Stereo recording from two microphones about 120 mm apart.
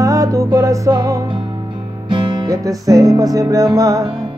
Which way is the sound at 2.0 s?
40° right (ahead or behind).